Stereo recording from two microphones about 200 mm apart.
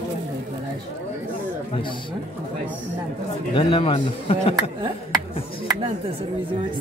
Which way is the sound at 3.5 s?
25° left (ahead or behind).